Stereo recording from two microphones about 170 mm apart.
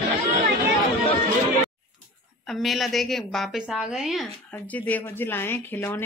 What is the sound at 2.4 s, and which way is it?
A woman's voice, centre (ahead or behind).